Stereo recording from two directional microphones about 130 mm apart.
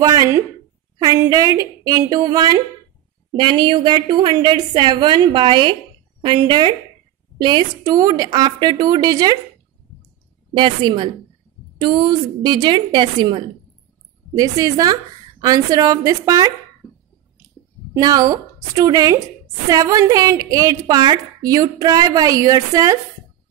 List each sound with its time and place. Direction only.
0.0 s a woman's voice: 25° right (ahead or behind)
10.5 s a woman's voice: 35° right (ahead or behind)
17.9 s a woman's voice: 30° right (ahead or behind)